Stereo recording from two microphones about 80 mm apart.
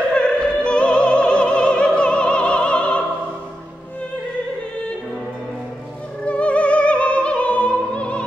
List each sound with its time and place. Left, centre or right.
0.1 s opera: centre
6.2 s opera: centre